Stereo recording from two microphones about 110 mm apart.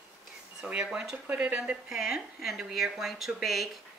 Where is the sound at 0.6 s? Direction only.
10° right (ahead or behind).